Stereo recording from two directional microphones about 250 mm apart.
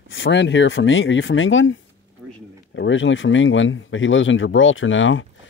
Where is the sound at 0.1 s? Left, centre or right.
Left.